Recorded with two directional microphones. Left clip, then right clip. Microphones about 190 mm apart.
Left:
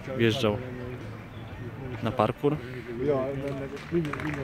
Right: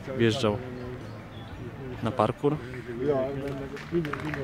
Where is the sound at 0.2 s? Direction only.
5° right (ahead or behind).